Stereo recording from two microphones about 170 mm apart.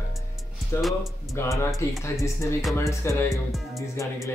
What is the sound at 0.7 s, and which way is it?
Speech, 15° left (ahead or behind).